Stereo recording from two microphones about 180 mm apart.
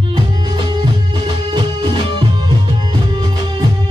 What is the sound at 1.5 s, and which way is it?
Music, 25° right (ahead or behind).